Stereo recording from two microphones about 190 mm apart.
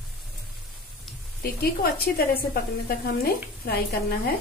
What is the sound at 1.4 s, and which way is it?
A woman's voice, 55° left (ahead or behind).